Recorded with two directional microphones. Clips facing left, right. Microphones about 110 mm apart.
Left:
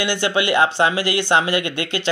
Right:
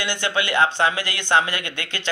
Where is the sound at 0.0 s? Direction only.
15° left (ahead or behind).